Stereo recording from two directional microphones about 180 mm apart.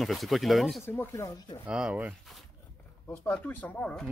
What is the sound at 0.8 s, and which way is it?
Speech, 15° left (ahead or behind).